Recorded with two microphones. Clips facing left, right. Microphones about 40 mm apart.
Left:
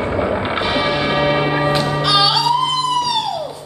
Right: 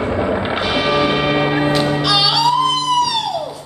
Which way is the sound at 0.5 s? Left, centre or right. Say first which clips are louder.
Left 1 dB; left.